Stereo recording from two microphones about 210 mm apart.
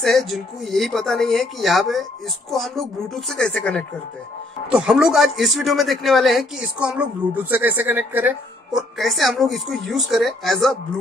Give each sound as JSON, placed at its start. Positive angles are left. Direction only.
{"t": 0.0, "sound": "a man's voice", "side_deg": 0}